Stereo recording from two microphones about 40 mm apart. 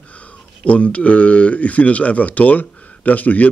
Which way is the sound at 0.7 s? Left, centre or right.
Left.